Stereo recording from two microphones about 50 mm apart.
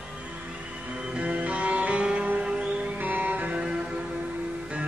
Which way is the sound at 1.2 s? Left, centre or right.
Right.